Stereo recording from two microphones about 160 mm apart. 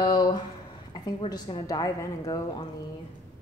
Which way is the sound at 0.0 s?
25° left (ahead or behind).